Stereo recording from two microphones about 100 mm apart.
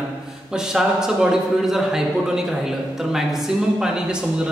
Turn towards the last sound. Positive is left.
turn(degrees=-10)  # may be behind; listen again after turning